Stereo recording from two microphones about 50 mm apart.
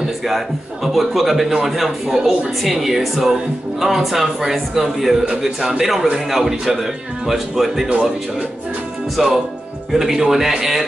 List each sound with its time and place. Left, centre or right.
0.9 s a man's voice: centre
7.9 s a man's voice: centre
9.1 s a man's voice: centre